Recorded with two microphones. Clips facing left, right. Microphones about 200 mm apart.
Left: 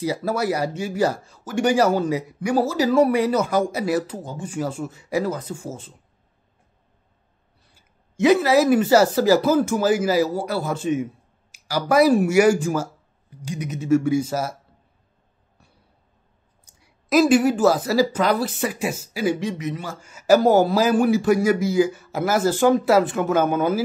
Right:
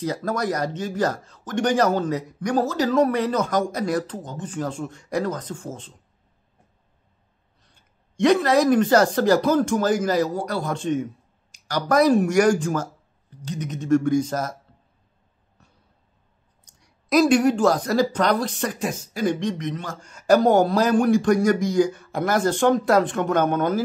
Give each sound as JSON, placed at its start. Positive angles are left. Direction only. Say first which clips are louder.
{"t": 0.0, "sound": "speech", "louder": "left 2 dB", "side_deg": 10}
{"t": 7.6, "sound": "speech", "louder": "left 1 dB", "side_deg": 5}
{"t": 16.6, "sound": "speech", "louder": "left 1 dB", "side_deg": 5}